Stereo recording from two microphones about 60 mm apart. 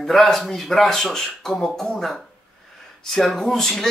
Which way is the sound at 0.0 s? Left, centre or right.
Centre.